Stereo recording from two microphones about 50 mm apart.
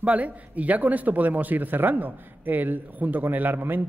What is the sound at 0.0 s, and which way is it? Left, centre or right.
A man's voice, right.